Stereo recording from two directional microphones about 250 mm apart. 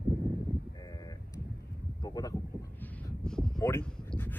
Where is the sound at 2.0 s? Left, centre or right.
Centre.